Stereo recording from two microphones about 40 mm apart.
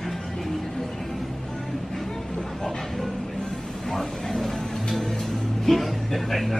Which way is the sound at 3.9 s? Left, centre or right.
Centre.